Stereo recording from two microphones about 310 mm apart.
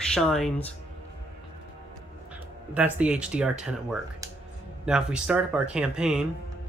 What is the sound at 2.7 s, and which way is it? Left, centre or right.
Speech, centre.